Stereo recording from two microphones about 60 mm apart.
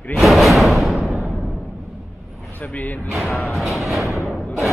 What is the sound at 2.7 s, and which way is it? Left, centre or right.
Speech, left.